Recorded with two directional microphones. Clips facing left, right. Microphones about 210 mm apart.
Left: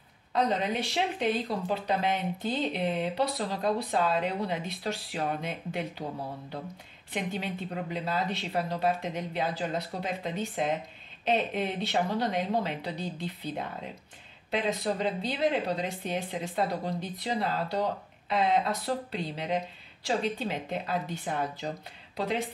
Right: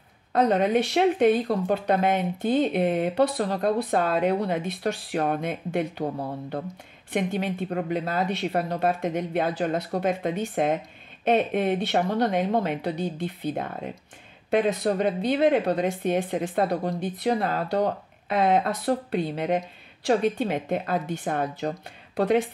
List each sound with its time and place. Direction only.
0.3 s speech: 50° right (ahead or behind)
7.1 s speech: 50° right (ahead or behind)